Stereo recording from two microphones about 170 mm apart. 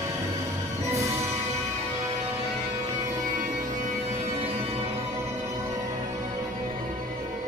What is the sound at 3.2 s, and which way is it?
Music, 45° right (ahead or behind).